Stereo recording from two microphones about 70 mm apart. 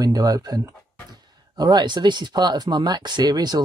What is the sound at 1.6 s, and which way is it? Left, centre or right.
Speech, right.